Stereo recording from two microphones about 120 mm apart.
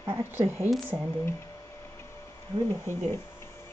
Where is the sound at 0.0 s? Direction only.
20° right (ahead or behind).